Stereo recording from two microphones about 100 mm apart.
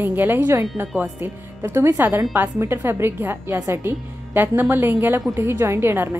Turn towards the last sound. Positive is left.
turn(degrees=-20)  # may be behind; listen again after turning